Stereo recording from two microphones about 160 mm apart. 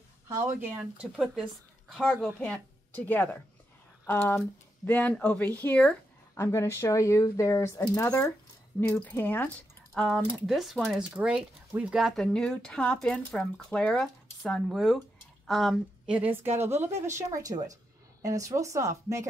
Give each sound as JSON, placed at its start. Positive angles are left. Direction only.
{"t": 0.4, "sound": "a woman's voice", "side_deg": -15}